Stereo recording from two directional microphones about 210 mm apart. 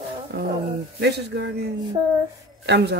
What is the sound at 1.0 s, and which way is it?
Speech, 55° right (ahead or behind).